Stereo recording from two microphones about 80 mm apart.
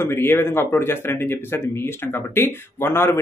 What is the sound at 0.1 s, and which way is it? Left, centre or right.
Speech, left.